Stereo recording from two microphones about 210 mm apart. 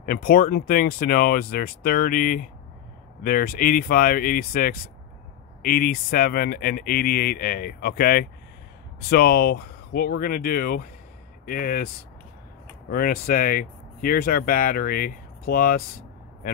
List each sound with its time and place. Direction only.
0.0 s speech: 45° left (ahead or behind)
12.9 s speech: 45° left (ahead or behind)